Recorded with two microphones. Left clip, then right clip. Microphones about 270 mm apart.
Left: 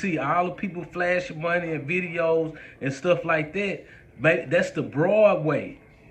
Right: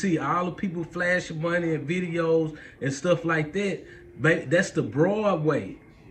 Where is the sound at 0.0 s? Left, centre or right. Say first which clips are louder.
Left 2 dB; centre.